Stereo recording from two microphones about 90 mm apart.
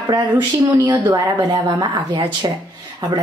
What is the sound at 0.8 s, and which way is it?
Speech, 20° right (ahead or behind).